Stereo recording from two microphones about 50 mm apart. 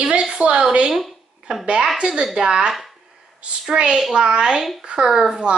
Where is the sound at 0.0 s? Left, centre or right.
Centre.